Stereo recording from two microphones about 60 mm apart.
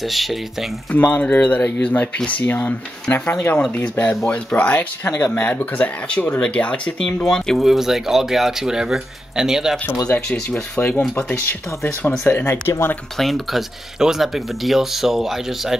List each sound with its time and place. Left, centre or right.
0.0 s speech: centre
0.9 s speech: left; by 7.5 s centre
7.5 s speech: centre
10.0 s speech: centre
10.8 s speech: left
12.3 s speech: left
13.2 s speech: centre